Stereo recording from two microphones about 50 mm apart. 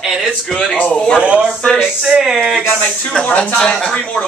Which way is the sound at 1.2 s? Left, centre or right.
Right.